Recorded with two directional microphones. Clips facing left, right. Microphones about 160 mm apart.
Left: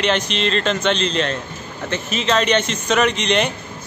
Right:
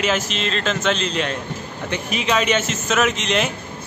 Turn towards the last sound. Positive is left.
turn(degrees=0)  # may be behind; listen again after turning